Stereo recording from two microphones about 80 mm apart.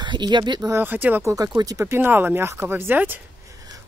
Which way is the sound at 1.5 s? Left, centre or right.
Right.